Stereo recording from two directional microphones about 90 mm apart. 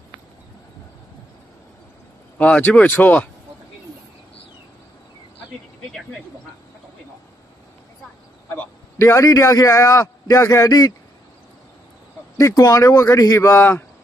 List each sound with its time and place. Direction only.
2.3 s speech: 15° left (ahead or behind)
9.0 s a man's voice: 35° left (ahead or behind)
12.4 s a man's voice: 40° left (ahead or behind)